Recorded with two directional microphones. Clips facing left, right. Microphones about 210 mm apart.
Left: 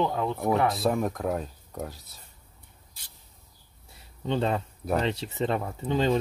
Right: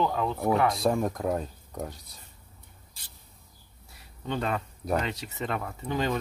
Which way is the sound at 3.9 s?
25° left (ahead or behind).